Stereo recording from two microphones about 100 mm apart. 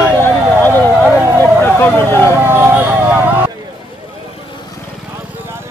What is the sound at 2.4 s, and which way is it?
Music, 20° right (ahead or behind).